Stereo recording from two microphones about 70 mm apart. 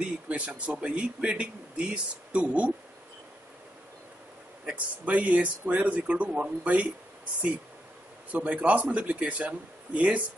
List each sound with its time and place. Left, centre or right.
0.3 s speech: centre
4.6 s speech: centre
8.3 s speech: right